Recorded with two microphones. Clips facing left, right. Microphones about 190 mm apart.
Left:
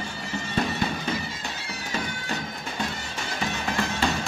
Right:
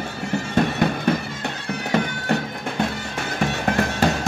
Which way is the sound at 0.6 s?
60° right (ahead or behind).